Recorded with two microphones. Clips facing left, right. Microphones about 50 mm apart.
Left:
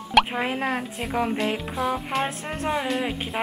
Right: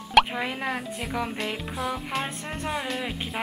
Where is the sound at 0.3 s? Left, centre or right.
Centre.